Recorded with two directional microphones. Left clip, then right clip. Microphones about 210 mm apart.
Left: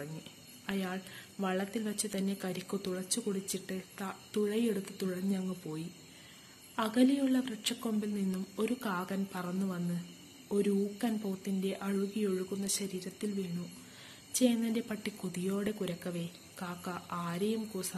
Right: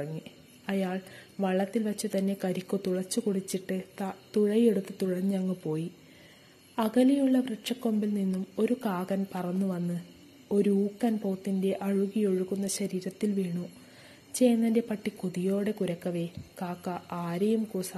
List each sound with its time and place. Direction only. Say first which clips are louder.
0.7 s a woman's voice: right 6 dB; 30° right (ahead or behind)